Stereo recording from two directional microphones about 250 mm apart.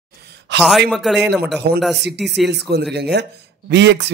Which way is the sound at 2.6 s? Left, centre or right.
Right.